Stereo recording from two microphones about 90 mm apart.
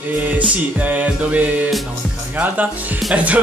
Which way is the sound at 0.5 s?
15° right (ahead or behind).